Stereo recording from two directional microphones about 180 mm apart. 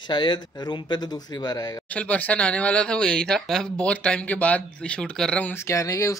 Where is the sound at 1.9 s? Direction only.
5° left (ahead or behind).